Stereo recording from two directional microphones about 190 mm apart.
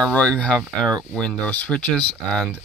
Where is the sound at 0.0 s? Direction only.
5° left (ahead or behind).